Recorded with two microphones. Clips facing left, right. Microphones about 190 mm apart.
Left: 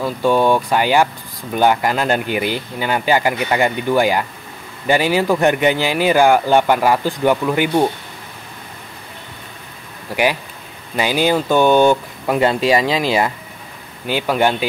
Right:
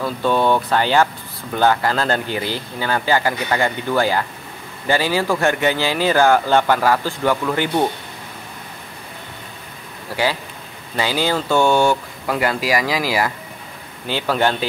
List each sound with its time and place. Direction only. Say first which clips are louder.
0.0 s speech: left 3 dB; 10° left (ahead or behind)
11.0 s speech: left 4 dB; 15° left (ahead or behind)